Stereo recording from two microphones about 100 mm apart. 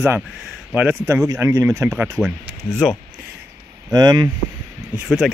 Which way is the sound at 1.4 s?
30° right (ahead or behind).